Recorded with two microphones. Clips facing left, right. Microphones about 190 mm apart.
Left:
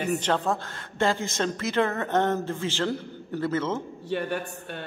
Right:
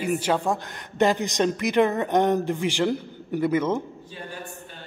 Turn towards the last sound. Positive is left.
turn(degrees=65)  # may be behind; listen again after turning